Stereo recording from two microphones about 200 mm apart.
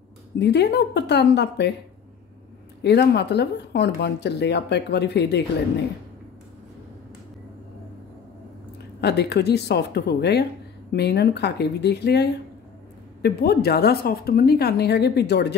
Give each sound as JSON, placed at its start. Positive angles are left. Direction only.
{"t": 0.4, "sound": "speech", "side_deg": 55}
{"t": 2.8, "sound": "speech", "side_deg": 55}
{"t": 9.0, "sound": "a woman's voice", "side_deg": 55}